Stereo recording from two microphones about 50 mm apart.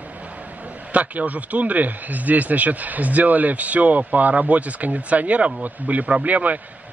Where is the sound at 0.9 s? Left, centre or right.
Right.